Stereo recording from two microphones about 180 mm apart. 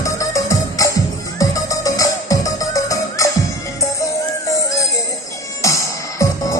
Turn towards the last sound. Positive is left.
turn(degrees=15)  # may be behind; listen again after turning